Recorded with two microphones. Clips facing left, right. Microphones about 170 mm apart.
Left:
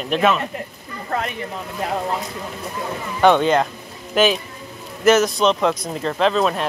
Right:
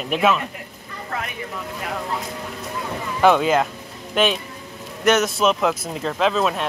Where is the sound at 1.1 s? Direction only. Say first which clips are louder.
Left 5 dB; 35° left (ahead or behind).